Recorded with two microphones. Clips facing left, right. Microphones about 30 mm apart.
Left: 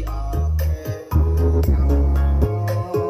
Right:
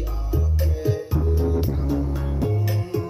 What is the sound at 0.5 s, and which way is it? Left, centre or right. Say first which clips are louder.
Music: right 4 dB; right.